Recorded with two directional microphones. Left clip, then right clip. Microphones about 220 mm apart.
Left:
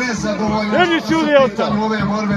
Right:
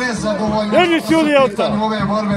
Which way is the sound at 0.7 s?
40° right (ahead or behind).